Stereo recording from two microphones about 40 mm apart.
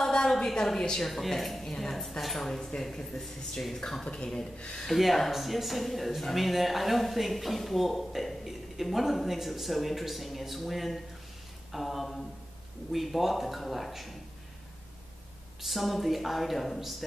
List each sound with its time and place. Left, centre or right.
0.0 s a sound: centre
0.7 s speech: centre
4.0 s a man's voice: left; by 14.1 s centre
15.6 s speech: centre